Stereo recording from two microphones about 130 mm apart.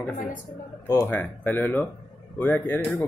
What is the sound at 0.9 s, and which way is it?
Speech, 15° left (ahead or behind).